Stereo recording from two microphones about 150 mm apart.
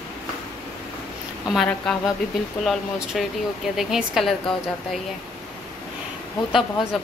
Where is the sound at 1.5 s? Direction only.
Centre (ahead or behind).